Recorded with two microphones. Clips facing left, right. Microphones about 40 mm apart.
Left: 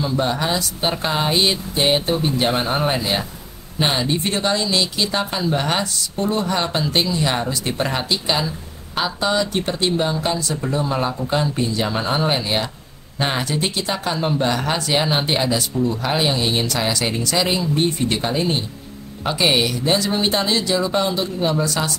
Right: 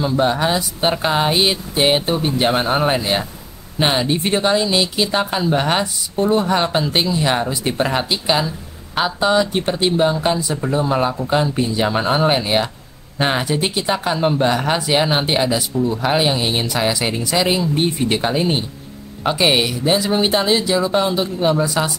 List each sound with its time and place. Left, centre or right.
0.0 s speech: centre